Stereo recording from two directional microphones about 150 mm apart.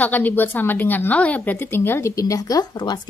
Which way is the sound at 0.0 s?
10° left (ahead or behind).